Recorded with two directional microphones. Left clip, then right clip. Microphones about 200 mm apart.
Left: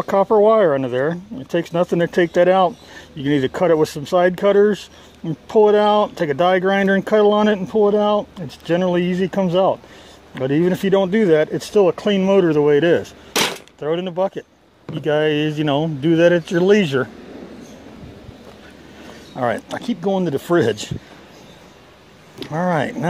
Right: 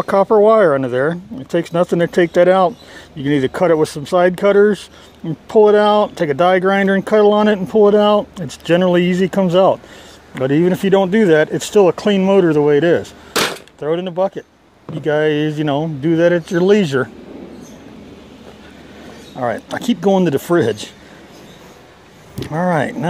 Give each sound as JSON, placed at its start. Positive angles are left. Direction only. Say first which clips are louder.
{"t": 0.0, "sound": "speech", "louder": "right 3 dB", "side_deg": 0}
{"t": 13.3, "sound": "a sound", "louder": "right 2 dB", "side_deg": 15}
{"t": 13.7, "sound": "speech", "louder": "right 3 dB", "side_deg": 0}
{"t": 19.3, "sound": "speech", "louder": "right 1 dB", "side_deg": 10}
{"t": 19.8, "sound": "speech", "louder": "right 10 dB", "side_deg": -15}
{"t": 20.4, "sound": "speech", "louder": "right 2 dB", "side_deg": 0}
{"t": 22.4, "sound": "speech", "louder": "right 3 dB", "side_deg": 0}